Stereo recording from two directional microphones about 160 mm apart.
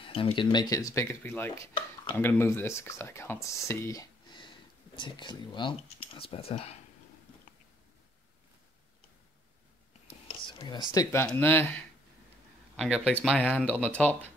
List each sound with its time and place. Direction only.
0.0 s speech: 35° left (ahead or behind); by 4.0 s 15° left (ahead or behind)
4.9 s speech: 30° left (ahead or behind)
10.0 s whispering: 35° left (ahead or behind)
10.9 s speech: 20° left (ahead or behind)
12.7 s speech: 5° left (ahead or behind)